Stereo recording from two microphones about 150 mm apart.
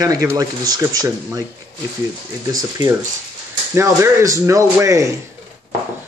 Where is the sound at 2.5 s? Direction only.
25° right (ahead or behind).